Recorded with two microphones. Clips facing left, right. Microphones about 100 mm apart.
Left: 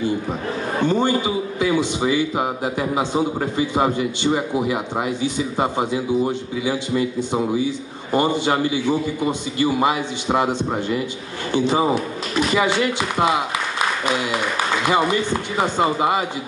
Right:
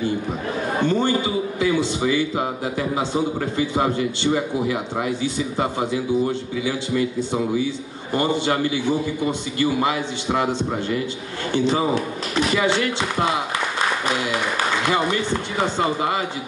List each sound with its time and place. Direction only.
0.8 s a man's voice: 15° left (ahead or behind)
14.9 s a man's voice: 15° left (ahead or behind)